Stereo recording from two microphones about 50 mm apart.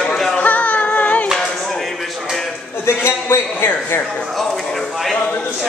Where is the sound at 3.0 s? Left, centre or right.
Left.